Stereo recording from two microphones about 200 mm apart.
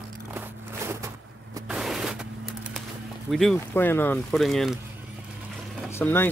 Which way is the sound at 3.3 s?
Centre (ahead or behind).